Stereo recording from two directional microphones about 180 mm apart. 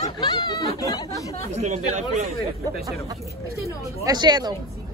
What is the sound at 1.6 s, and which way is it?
Speech, 40° right (ahead or behind).